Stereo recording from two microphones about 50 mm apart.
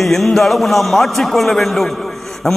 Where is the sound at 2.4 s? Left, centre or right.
Centre.